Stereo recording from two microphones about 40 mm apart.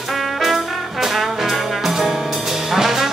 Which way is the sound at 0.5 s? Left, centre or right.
Centre.